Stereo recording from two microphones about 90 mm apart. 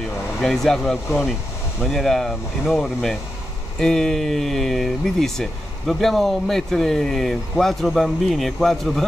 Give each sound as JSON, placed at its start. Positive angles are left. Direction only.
{"t": 0.4, "sound": "speech", "side_deg": 5}